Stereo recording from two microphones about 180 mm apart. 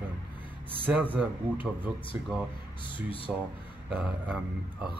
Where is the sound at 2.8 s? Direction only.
30° left (ahead or behind).